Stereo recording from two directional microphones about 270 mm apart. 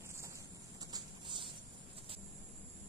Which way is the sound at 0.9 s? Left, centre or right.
Centre.